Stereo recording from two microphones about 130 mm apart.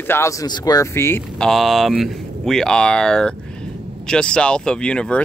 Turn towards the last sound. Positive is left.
turn(degrees=5)  # may be behind; listen again after turning